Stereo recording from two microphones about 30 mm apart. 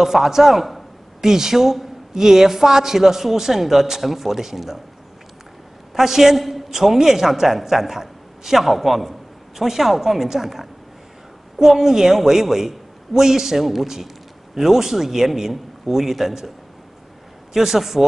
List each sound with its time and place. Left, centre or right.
0.0 s a man's voice: centre
1.2 s a man's voice: centre
5.9 s a man's voice: centre